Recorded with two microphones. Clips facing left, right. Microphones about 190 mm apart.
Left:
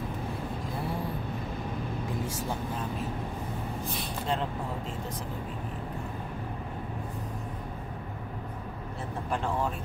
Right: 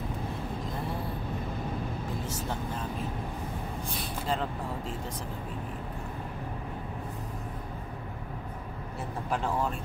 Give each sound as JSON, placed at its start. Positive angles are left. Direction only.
{"t": 3.8, "sound": "gasp", "side_deg": 0}